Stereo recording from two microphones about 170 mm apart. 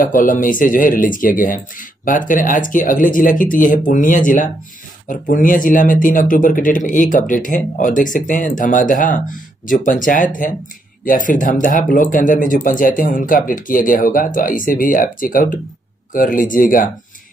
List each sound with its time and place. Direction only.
0.0 s speech: 50° left (ahead or behind)